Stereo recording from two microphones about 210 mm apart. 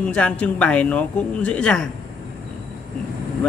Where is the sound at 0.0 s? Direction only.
5° left (ahead or behind).